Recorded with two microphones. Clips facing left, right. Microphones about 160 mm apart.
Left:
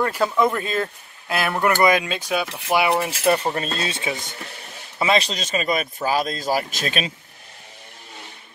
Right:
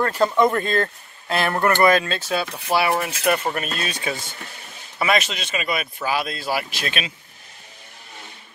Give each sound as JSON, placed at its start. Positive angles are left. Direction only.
{"t": 0.0, "sound": "speech", "side_deg": 10}
{"t": 3.1, "sound": "speech", "side_deg": 30}
{"t": 5.3, "sound": "speech", "side_deg": 40}